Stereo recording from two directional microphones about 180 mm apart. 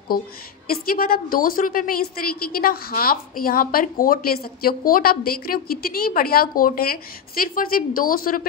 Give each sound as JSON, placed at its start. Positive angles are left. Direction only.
{"t": 0.7, "sound": "a woman's voice", "side_deg": 55}